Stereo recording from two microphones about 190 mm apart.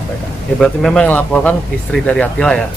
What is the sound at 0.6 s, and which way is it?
Speech, 5° left (ahead or behind).